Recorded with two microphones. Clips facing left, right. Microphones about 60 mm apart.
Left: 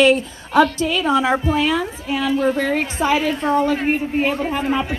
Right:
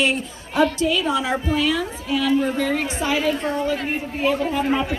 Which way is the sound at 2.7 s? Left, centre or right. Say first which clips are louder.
Left 4 dB; left.